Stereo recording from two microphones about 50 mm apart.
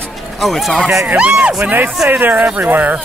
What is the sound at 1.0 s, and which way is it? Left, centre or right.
Speech, right.